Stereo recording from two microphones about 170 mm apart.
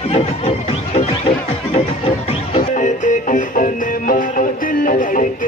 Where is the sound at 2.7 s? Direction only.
45° left (ahead or behind).